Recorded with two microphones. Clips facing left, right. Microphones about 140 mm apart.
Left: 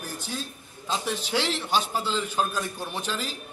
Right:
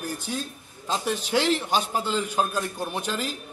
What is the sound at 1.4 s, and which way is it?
Speech, 45° right (ahead or behind).